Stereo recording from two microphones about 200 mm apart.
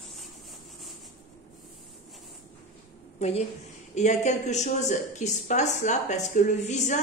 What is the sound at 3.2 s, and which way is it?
A woman's voice, 30° left (ahead or behind).